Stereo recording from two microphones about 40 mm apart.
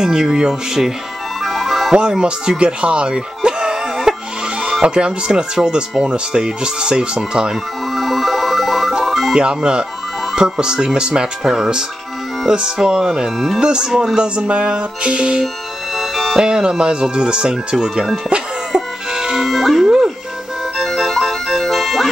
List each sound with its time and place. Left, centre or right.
0.0 s speech: centre
1.4 s ice cream truck: centre
2.0 s speech: right
7.9 s music: centre
9.3 s speech: right
11.4 s speech: centre
12.4 s speech: centre
16.0 s music: centre
16.3 s speech: centre
18.7 s music: centre
19.4 s music: centre
20.7 s ice cream truck: centre